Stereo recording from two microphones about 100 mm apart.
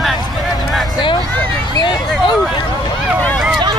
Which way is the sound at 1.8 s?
50° left (ahead or behind).